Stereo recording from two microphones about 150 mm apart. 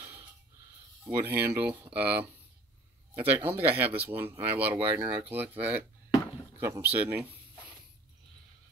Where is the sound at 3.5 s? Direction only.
10° right (ahead or behind).